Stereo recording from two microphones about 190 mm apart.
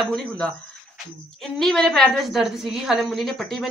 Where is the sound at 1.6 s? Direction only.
5° left (ahead or behind).